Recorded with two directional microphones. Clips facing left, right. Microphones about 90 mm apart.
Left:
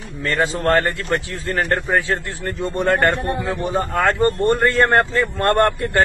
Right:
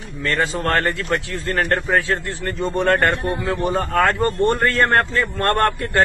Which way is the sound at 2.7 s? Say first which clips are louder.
Right 1 dB; 20° left (ahead or behind).